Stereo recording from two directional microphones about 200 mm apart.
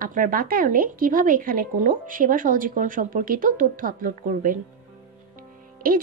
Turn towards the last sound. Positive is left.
turn(degrees=-45)  # may be behind; listen again after turning